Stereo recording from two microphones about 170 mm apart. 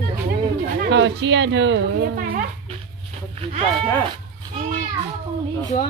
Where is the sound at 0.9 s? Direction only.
90° right; by 2.4 s 75° right (ahead or behind).